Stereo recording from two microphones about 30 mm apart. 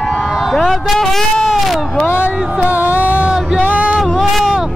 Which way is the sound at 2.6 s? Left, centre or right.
Right.